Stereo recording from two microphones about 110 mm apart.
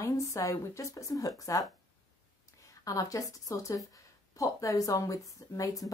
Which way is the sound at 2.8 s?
30° left (ahead or behind).